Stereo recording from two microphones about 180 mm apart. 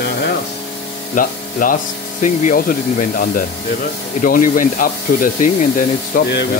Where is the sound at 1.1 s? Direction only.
50° left (ahead or behind).